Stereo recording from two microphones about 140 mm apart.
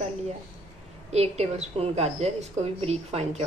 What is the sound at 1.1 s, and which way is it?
A woman's voice, 50° right (ahead or behind).